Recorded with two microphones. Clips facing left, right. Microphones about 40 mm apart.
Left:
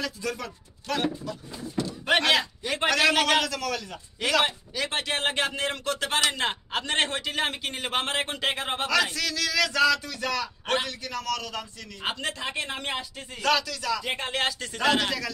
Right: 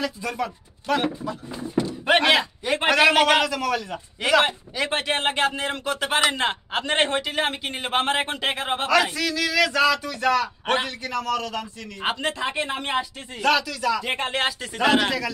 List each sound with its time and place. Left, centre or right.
0.0 s a man's voice: centre
5.2 s a man's voice: centre